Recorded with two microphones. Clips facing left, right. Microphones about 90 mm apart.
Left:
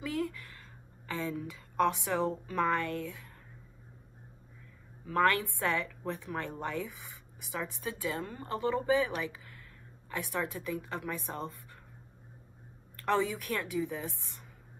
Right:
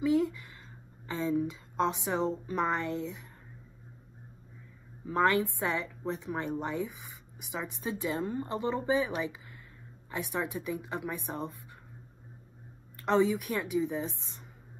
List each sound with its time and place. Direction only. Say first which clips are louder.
0.0 s a woman's voice: right 7 dB; 20° right (ahead or behind)
5.0 s a woman's voice: right 1 dB; 20° right (ahead or behind)
12.9 s a woman's voice: right 4 dB; 20° right (ahead or behind)